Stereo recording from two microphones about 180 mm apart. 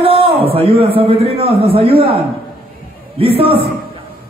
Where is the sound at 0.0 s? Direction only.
30° right (ahead or behind).